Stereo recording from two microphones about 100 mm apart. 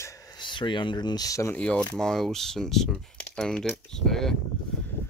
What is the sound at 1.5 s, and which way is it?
Speech, 10° left (ahead or behind).